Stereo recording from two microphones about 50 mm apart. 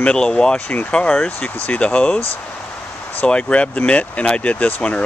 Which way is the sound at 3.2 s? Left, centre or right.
Left.